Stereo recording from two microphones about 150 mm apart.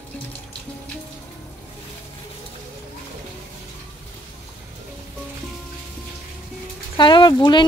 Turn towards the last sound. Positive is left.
turn(degrees=30)  # may be behind; listen again after turning